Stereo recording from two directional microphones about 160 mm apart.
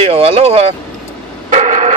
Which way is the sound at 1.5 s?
50° right (ahead or behind).